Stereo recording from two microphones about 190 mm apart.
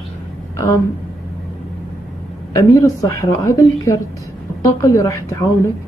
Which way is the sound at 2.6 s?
15° left (ahead or behind).